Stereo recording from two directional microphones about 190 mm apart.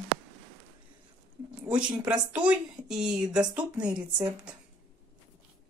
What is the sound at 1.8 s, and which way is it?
Speech, 5° right (ahead or behind).